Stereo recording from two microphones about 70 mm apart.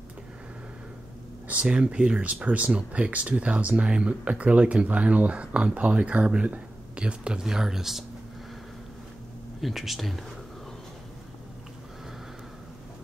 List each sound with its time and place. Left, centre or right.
1.5 s speech: centre
9.6 s speech: centre